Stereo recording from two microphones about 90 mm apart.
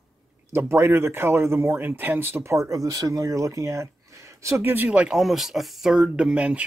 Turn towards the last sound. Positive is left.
turn(degrees=-15)  # may be behind; listen again after turning